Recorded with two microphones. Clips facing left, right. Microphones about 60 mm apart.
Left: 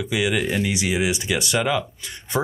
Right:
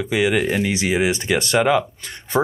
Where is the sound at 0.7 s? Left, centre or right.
Right.